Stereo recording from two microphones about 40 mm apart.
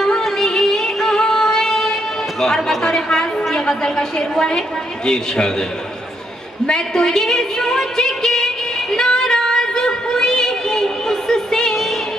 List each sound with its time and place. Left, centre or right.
0.0 s music: centre
2.4 s a woman's voice: centre
8.9 s a sound: centre
11.7 s music: centre